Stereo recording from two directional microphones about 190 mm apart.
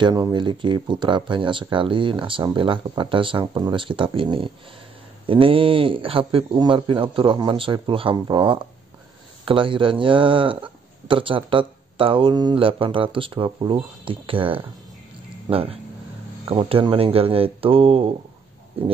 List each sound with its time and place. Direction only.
0.0 s speech: 20° right (ahead or behind)